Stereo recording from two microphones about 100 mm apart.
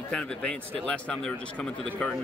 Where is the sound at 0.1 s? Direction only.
10° left (ahead or behind).